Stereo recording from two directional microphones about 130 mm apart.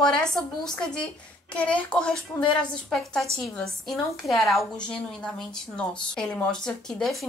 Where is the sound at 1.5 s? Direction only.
10° left (ahead or behind).